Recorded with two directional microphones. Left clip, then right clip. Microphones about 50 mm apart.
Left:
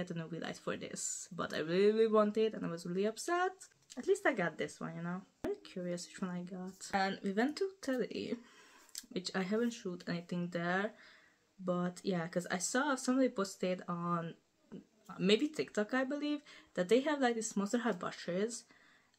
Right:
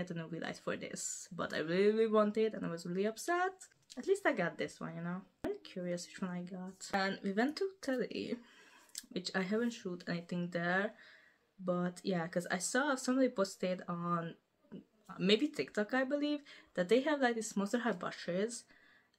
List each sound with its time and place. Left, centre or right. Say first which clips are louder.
0.0 s speech: even; centre
5.6 s speech: right 1 dB; centre
6.8 s speech: left 1 dB; centre